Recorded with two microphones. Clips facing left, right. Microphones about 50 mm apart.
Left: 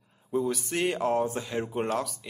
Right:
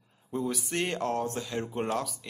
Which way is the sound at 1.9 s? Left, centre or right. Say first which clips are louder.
Left 2 dB; centre.